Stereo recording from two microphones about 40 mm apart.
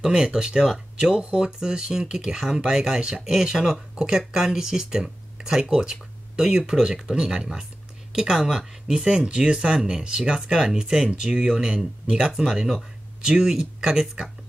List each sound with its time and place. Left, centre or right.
0.0 s speech: centre
3.9 s speech: right